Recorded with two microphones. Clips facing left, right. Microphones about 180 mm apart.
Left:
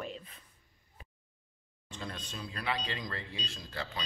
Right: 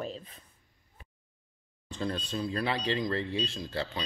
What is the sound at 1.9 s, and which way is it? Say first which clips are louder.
Speech: right 9 dB; 35° right (ahead or behind).